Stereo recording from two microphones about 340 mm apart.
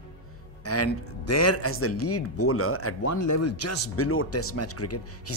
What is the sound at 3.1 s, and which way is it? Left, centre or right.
Speech, left.